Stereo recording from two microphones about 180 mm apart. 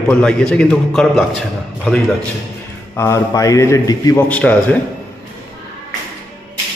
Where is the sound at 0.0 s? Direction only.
5° left (ahead or behind).